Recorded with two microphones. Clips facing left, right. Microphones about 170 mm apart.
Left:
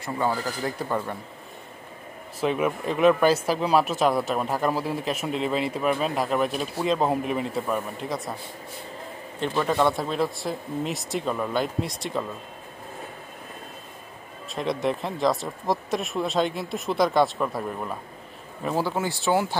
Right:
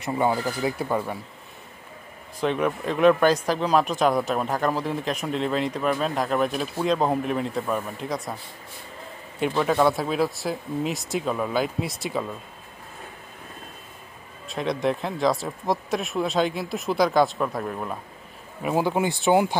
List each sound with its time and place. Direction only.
0.0 s speech: 15° right (ahead or behind)
2.4 s speech: 5° left (ahead or behind)
9.6 s speech: 5° right (ahead or behind)
14.5 s speech: centre (ahead or behind)
18.6 s speech: 15° right (ahead or behind)